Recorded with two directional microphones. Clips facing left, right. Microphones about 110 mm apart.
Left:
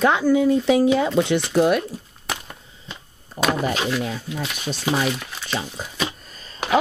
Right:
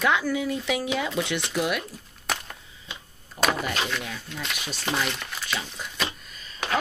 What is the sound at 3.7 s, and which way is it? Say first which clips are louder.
Speech: left 6 dB; 5° left (ahead or behind).